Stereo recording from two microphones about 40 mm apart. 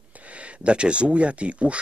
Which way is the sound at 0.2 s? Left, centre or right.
Right.